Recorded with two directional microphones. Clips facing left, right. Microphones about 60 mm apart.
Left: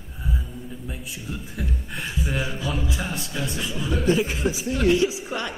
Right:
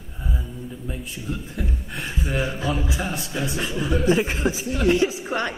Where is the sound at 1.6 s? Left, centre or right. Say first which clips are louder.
Right 1 dB; centre.